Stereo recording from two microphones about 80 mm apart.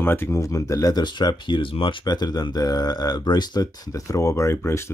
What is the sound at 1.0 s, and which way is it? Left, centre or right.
Speech, left.